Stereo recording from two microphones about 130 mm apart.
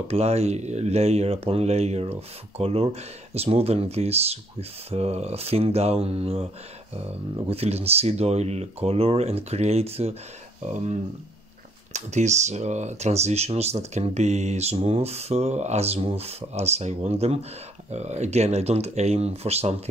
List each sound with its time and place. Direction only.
0.1 s speech: 55° right (ahead or behind)
10.6 s speech: 65° right (ahead or behind)